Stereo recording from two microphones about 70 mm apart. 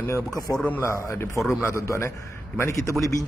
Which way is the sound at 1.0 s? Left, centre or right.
Left.